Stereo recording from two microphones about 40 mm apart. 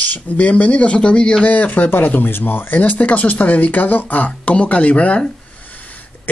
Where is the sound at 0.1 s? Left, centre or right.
Left.